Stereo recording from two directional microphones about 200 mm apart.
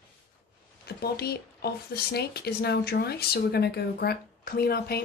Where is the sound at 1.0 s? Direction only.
50° left (ahead or behind).